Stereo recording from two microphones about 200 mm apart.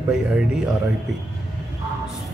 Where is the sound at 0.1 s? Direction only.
5° right (ahead or behind).